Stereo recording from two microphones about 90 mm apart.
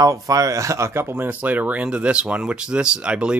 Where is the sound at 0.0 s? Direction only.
40° right (ahead or behind).